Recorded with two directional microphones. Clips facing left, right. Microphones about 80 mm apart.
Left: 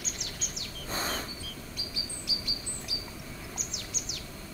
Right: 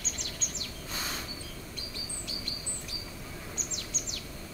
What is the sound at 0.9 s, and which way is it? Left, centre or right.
Bird, left.